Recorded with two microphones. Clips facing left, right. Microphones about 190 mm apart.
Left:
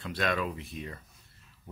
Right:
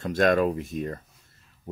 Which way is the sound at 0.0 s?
45° right (ahead or behind).